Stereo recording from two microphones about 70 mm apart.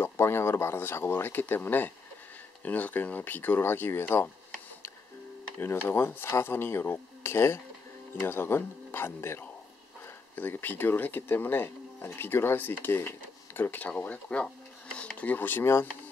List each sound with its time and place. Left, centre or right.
0.0 s speech: left
5.6 s speech: left